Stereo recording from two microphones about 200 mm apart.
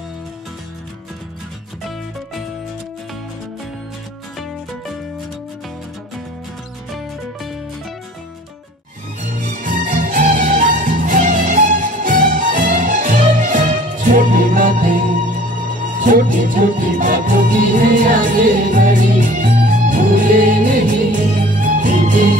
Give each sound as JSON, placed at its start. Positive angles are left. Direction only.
{"t": 9.2, "sound": "music", "side_deg": -40}
{"t": 16.0, "sound": "music", "side_deg": -40}